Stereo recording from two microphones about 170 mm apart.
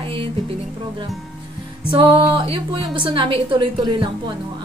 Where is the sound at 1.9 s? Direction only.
30° right (ahead or behind).